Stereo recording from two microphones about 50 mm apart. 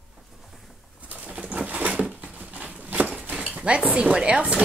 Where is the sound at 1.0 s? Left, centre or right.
Right.